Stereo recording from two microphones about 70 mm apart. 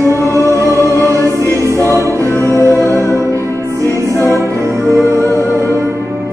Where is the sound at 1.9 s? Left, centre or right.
Right.